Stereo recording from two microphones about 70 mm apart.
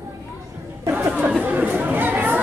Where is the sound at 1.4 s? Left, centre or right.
Right.